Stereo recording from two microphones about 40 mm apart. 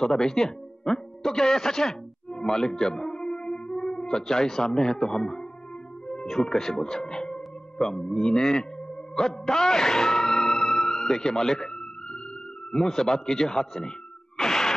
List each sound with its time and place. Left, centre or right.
0.0 s speech: centre
2.3 s music: centre
4.3 s speech: centre
6.4 s speech: centre
9.1 s music: centre
12.7 s speech: centre
14.3 s a sound: centre